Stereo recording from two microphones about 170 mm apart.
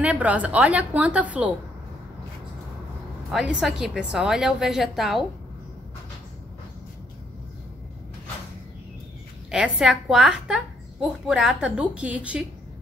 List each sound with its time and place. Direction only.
0.0 s a woman's voice: 10° right (ahead or behind)
3.3 s a woman's voice: 5° right (ahead or behind)
9.5 s a woman's voice: 5° right (ahead or behind)